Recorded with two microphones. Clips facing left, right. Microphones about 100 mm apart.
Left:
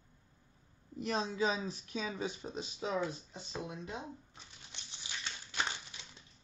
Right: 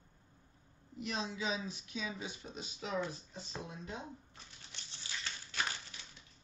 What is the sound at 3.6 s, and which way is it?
Speech, 20° left (ahead or behind).